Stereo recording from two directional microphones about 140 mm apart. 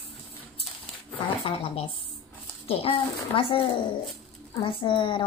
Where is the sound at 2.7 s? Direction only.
45° left (ahead or behind).